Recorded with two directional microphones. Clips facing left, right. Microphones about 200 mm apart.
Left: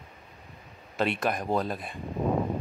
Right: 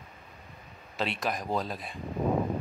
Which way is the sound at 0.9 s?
55° left (ahead or behind).